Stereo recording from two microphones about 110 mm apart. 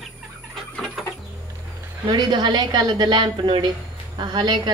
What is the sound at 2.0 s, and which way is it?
A woman's voice, 40° right (ahead or behind).